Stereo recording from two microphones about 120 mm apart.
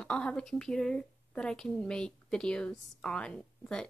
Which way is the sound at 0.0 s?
10° left (ahead or behind).